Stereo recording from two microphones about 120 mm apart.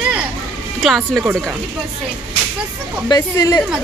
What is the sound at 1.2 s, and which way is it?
Speech, 15° right (ahead or behind).